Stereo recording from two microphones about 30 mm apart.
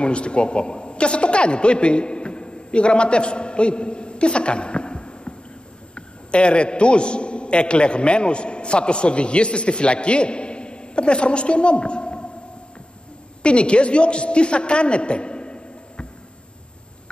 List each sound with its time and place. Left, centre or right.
0.0 s a man's voice: left
13.4 s a man's voice: left